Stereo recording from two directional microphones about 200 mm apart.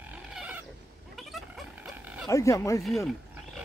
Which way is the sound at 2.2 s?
15° left (ahead or behind).